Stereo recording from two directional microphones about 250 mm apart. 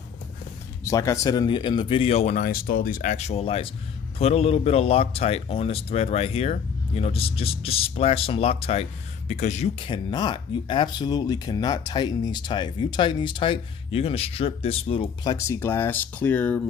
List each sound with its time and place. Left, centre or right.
0.8 s speech: centre